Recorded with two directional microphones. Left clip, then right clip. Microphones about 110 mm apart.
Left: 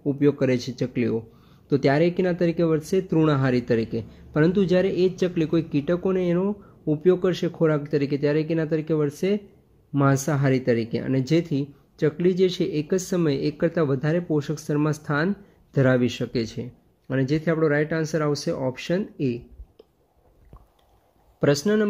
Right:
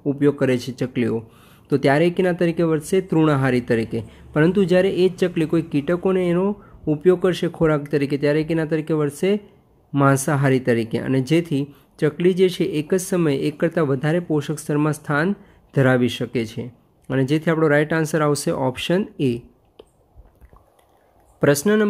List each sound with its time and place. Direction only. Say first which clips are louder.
0.0 s speech: right 3 dB; 15° right (ahead or behind)
21.4 s speech: right 4 dB; 20° right (ahead or behind)